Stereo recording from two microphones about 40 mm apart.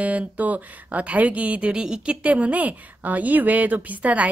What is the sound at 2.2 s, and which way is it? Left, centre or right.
A woman's voice, right.